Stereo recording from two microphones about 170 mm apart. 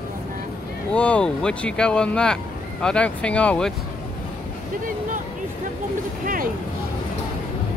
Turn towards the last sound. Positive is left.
turn(degrees=-55)  # may be behind; listen again after turning